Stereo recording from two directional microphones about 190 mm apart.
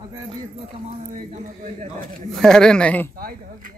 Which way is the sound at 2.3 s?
Centre (ahead or behind).